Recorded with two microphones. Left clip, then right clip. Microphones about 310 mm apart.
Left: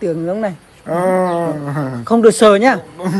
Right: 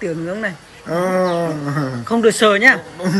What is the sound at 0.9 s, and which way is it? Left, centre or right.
Speech, left.